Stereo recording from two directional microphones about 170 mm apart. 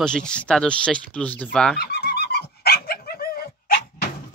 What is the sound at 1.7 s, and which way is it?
Dog, 70° left (ahead or behind).